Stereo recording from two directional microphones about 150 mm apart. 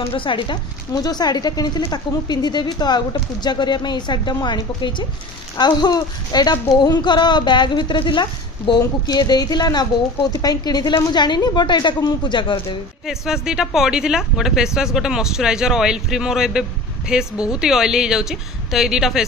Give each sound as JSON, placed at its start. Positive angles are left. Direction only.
{"t": 0.0, "sound": "speech", "side_deg": 35}
{"t": 13.0, "sound": "speech", "side_deg": -5}